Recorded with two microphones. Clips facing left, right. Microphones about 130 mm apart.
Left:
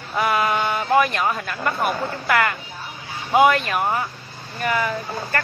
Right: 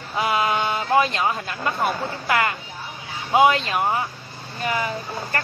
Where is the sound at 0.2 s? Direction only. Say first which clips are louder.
Left 1 dB; 25° right (ahead or behind).